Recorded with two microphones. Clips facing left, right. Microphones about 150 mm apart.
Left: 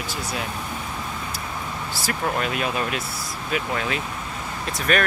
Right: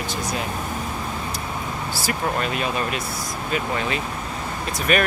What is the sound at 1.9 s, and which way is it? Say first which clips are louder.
Speech: even; centre (ahead or behind).